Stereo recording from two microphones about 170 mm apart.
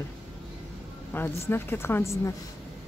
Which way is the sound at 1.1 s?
10° left (ahead or behind).